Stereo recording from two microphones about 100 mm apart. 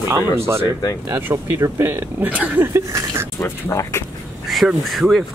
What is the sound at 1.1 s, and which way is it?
Speech, 20° right (ahead or behind).